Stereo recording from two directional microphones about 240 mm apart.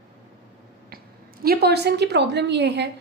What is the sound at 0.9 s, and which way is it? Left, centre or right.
A woman's voice, right.